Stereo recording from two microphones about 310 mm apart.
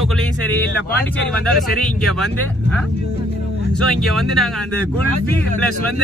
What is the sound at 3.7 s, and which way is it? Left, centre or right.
Speech, centre.